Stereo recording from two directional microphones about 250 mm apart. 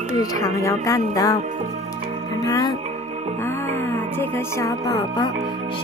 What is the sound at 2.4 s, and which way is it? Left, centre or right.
Music, centre.